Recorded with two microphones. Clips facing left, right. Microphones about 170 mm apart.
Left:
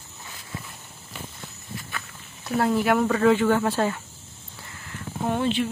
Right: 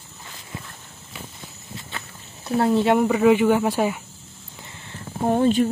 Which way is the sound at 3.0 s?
10° right (ahead or behind).